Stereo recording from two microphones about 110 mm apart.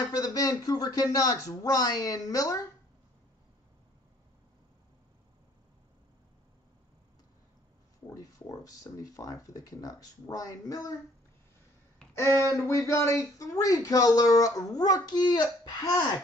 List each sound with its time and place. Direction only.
0.0 s speech: 35° left (ahead or behind)
8.1 s speech: 35° left (ahead or behind)
12.3 s speech: 30° right (ahead or behind)
12.5 s speech: 30° left (ahead or behind)